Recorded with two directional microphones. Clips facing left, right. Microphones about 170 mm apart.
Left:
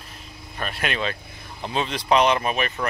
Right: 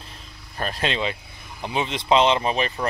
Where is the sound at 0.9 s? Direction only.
15° right (ahead or behind).